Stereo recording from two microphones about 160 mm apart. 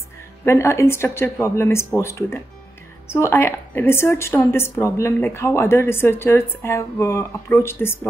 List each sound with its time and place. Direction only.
0.5 s a woman's voice: 15° left (ahead or behind)